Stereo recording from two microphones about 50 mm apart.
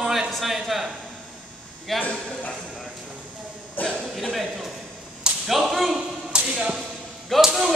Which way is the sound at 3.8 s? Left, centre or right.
Left.